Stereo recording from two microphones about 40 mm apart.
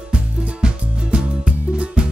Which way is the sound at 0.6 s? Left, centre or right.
Right.